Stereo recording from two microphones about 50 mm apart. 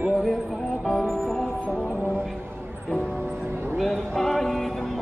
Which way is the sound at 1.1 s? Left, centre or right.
Centre.